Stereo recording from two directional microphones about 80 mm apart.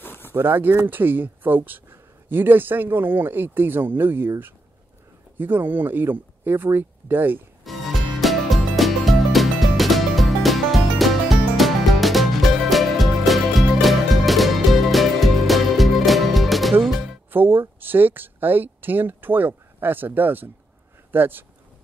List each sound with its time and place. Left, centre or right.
0.0 s a sound: left
0.3 s speech: right
7.6 s music: centre
17.3 s speech: right